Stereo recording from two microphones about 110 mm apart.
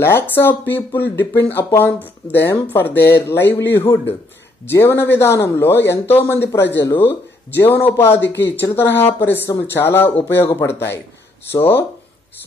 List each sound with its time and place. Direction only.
0.0 s speech: 20° left (ahead or behind)